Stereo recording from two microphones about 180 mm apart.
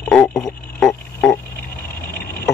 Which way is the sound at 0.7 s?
5° left (ahead or behind).